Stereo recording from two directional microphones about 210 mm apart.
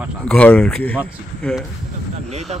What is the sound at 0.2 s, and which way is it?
Speech, 5° left (ahead or behind).